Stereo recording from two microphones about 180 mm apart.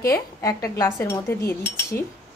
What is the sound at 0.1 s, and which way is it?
Speech, 15° left (ahead or behind).